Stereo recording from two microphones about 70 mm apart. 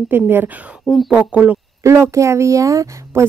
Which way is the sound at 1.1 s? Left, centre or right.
Centre.